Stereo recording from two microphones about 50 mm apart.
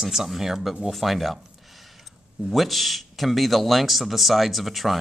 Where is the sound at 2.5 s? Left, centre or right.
Centre.